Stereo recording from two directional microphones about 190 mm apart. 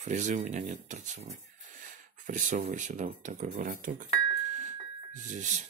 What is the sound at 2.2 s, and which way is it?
Speech, 40° right (ahead or behind).